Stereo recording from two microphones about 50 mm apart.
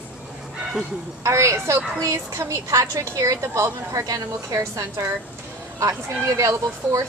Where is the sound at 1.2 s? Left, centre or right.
Right.